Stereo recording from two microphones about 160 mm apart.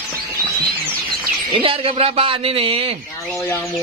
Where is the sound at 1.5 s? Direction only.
35° right (ahead or behind).